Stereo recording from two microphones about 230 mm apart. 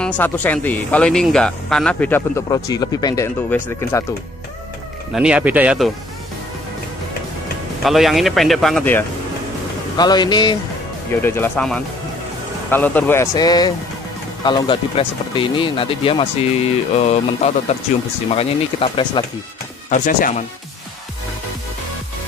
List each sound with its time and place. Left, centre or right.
0.0 s speech: centre
5.1 s speech: centre
7.8 s speech: centre
9.9 s speech: centre
19.9 s speech: left